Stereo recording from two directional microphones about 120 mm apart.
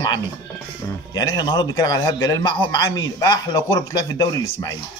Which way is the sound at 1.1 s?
35° left (ahead or behind).